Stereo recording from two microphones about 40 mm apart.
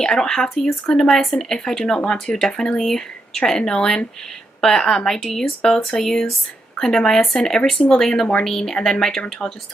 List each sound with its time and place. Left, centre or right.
0.0 s speech: centre
8.7 s speech: centre
9.4 s speech: left